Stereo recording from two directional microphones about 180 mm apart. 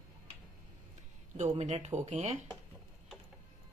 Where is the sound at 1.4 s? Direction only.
35° right (ahead or behind).